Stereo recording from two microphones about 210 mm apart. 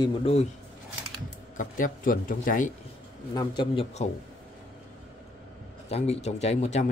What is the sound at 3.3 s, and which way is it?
Speech, 20° left (ahead or behind).